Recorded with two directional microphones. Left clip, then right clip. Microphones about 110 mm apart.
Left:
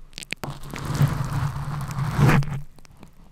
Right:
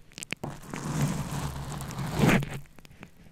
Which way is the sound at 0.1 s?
10° left (ahead or behind).